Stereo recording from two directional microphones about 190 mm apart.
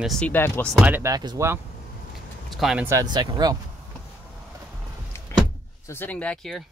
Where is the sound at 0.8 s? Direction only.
15° right (ahead or behind).